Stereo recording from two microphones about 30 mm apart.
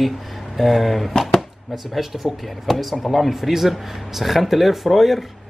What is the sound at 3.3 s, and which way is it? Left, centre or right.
A man's voice, centre.